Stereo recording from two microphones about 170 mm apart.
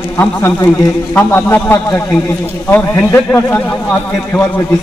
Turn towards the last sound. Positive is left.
turn(degrees=15)  # may be behind; listen again after turning